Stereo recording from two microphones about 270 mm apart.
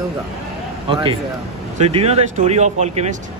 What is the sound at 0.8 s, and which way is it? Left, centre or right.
Speech, centre.